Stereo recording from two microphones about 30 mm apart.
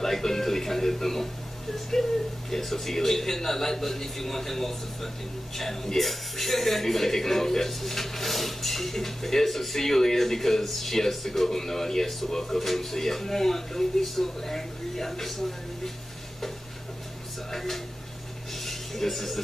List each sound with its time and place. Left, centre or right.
0.0 s music: centre
2.5 s speech: centre
17.5 s a sound: centre
18.5 s music: centre